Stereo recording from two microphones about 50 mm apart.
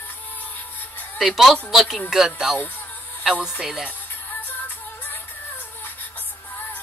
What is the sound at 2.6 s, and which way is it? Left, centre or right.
Music, left.